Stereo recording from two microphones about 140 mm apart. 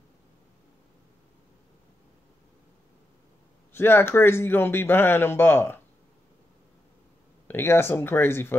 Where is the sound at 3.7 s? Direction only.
15° left (ahead or behind).